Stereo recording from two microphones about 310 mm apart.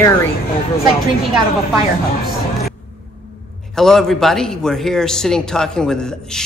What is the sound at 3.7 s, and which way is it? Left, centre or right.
Speech, centre.